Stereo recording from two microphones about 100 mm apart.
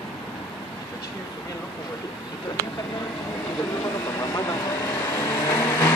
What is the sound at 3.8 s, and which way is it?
Vehicle, 35° left (ahead or behind).